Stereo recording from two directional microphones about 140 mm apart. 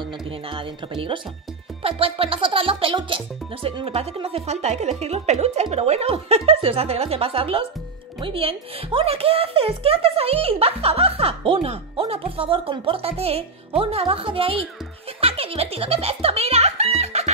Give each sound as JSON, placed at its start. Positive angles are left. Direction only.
{"t": 1.8, "sound": "music", "side_deg": -40}
{"t": 3.6, "sound": "a woman's voice", "side_deg": -45}
{"t": 17.0, "sound": "chicken", "side_deg": -50}